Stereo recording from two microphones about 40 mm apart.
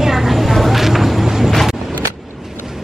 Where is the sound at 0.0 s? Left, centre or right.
Centre.